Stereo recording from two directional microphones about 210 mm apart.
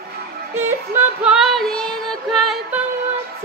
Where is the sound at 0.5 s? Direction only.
10° right (ahead or behind).